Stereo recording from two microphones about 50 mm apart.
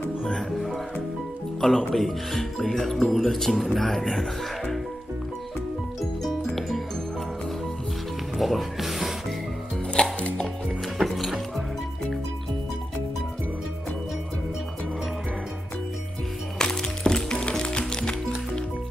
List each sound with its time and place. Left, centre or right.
0.2 s music: centre
1.6 s speech: centre
8.4 s speech: centre
10.0 s music: centre
11.0 s music: centre
16.5 s music: centre